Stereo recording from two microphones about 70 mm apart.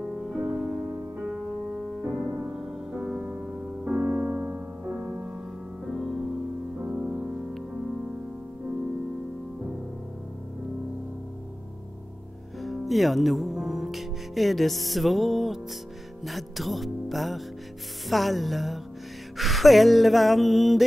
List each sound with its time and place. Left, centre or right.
0.4 s music: centre
2.6 s music: centre
3.8 s music: right
5.9 s music: centre
6.8 s music: centre
12.6 s music: centre